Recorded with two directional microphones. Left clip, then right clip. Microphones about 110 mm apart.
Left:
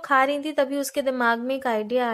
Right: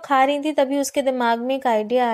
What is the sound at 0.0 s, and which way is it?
A woman's voice, 25° right (ahead or behind).